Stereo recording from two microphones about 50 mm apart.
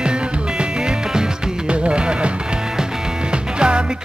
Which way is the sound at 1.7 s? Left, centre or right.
Right.